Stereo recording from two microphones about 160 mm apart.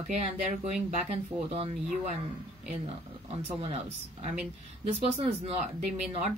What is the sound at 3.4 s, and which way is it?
Speech, 40° right (ahead or behind).